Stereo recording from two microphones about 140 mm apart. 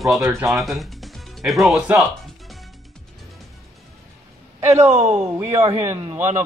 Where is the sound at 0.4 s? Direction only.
Centre (ahead or behind).